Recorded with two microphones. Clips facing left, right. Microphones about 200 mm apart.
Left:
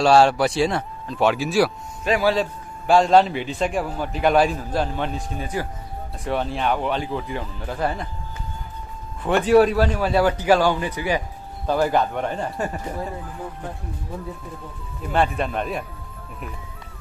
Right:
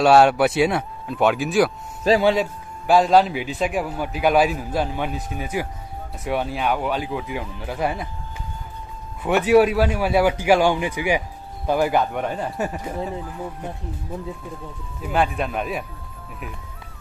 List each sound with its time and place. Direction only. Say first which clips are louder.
0.0 s speech: right 1 dB; centre (ahead or behind)
2.1 s a man's voice: right 4 dB; 35° right (ahead or behind)
2.9 s a man's voice: even; centre (ahead or behind)
9.2 s a man's voice: even; 10° right (ahead or behind)
15.0 s speech: even; 5° right (ahead or behind)